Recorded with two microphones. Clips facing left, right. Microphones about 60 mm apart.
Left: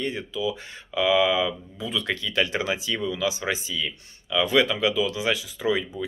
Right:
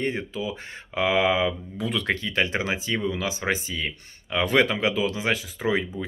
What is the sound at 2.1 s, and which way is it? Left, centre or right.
Speech, right.